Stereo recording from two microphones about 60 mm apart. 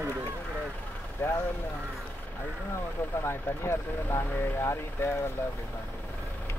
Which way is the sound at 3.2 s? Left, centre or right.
Left.